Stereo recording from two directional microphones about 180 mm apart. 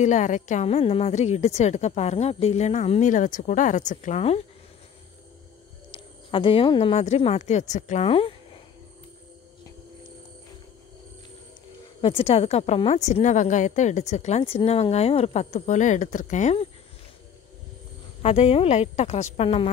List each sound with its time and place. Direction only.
0.0 s a woman's voice: 40° left (ahead or behind)
5.9 s speech: 30° left (ahead or behind)
12.0 s a woman's voice: 30° left (ahead or behind)
18.2 s a woman's voice: 35° left (ahead or behind)